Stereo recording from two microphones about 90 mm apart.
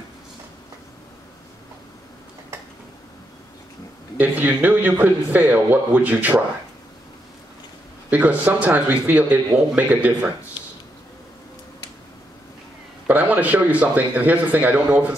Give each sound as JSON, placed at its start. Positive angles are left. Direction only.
{"t": 4.2, "sound": "a man's voice", "side_deg": -20}
{"t": 8.1, "sound": "a man's voice", "side_deg": -15}
{"t": 13.0, "sound": "a man's voice", "side_deg": -15}